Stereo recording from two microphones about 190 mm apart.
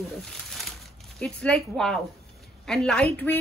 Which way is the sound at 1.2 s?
5° left (ahead or behind).